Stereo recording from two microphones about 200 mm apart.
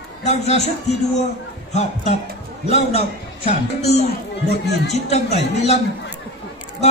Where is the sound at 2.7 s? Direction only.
30° left (ahead or behind).